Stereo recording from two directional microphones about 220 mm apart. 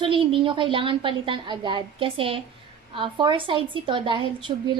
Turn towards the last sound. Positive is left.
turn(degrees=-20)  # may be behind; listen again after turning